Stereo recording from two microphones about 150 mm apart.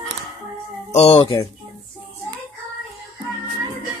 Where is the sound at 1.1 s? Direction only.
35° left (ahead or behind).